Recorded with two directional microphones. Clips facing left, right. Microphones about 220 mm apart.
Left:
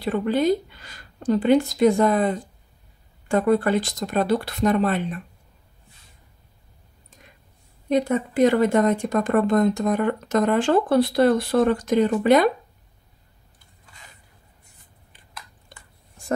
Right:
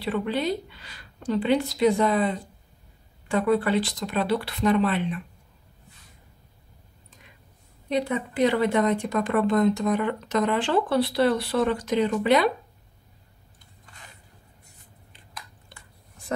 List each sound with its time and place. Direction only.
0.0 s a woman's voice: 45° left (ahead or behind)
7.9 s a woman's voice: 45° left (ahead or behind)
15.7 s a sound: 45° left (ahead or behind)